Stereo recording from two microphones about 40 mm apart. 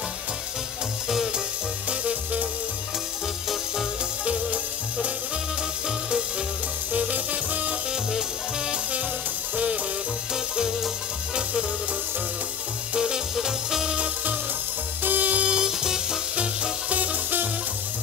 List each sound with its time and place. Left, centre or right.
1.0 s music: centre
1.9 s music: right
6.9 s music: right
10.3 s music: centre
12.9 s music: centre
15.0 s music: right
15.4 s music: centre
16.9 s music: right